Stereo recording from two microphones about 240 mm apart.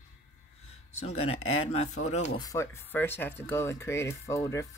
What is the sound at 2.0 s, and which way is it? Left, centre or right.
Speech, left.